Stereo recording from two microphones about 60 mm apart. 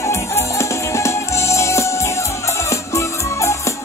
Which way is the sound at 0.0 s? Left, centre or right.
Left.